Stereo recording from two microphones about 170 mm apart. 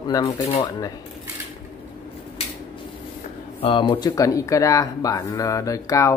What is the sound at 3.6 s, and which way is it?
Speech, 30° left (ahead or behind).